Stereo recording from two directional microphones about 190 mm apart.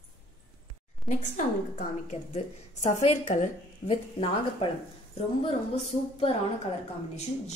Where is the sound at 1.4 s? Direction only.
45° left (ahead or behind).